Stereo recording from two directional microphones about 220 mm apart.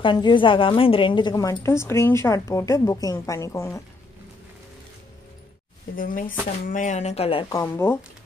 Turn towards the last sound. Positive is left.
turn(degrees=15)  # may be behind; listen again after turning